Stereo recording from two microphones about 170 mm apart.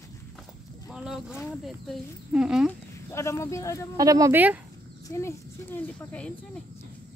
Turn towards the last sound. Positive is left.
turn(degrees=10)  # may be behind; listen again after turning